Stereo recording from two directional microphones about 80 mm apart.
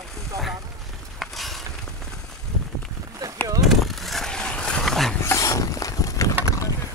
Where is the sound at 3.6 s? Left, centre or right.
Centre.